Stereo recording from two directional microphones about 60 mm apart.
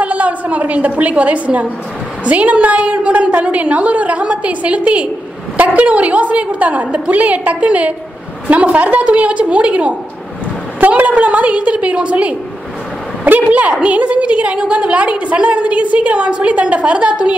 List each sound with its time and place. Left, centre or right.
0.0 s a woman's voice: right